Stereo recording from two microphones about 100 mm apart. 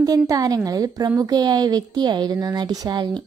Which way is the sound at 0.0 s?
40° right (ahead or behind).